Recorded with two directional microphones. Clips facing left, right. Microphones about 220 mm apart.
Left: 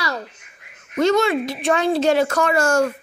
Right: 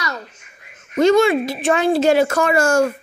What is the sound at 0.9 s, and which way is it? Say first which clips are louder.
Speech: right 4 dB; 10° right (ahead or behind).